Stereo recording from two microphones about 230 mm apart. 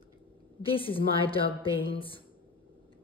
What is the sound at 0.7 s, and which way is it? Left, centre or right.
A woman's voice, left.